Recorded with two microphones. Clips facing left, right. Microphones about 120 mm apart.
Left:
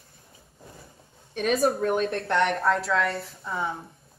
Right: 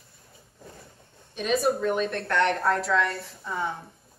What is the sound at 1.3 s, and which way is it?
Speech, 55° left (ahead or behind).